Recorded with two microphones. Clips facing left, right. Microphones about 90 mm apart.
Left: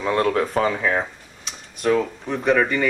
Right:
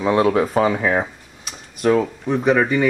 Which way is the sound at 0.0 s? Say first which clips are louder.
Right 4 dB; 5° right (ahead or behind).